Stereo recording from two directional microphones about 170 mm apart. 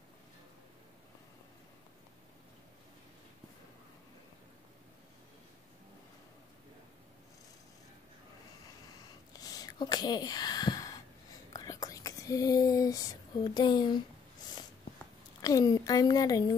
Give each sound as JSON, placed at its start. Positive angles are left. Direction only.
{"t": 9.3, "sound": "a sound", "side_deg": 20}
{"t": 11.5, "sound": "speech", "side_deg": 20}
{"t": 15.4, "sound": "a woman's voice", "side_deg": 20}